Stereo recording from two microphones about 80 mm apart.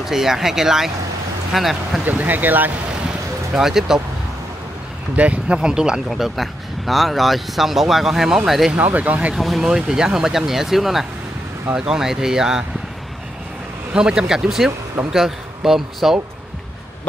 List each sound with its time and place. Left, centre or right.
0.0 s speech: centre
2.0 s speech: right
3.5 s speech: centre
5.1 s speech: centre
8.7 s speech: right
9.3 s speech: centre
13.9 s speech: centre